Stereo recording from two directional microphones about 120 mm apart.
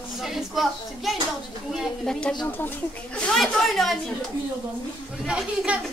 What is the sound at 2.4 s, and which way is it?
Speech, 15° left (ahead or behind).